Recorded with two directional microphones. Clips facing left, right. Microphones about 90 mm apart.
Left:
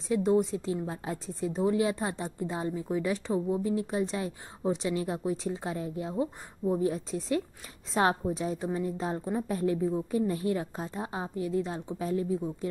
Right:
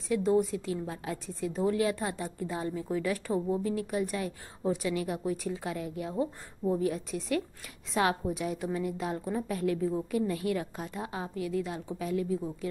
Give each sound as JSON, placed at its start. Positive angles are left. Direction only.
{"t": 0.1, "sound": "a woman's voice", "side_deg": 25}
{"t": 3.7, "sound": "a woman's voice", "side_deg": 25}